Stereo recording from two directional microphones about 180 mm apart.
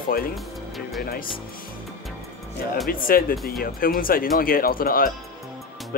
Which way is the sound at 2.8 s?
55° left (ahead or behind).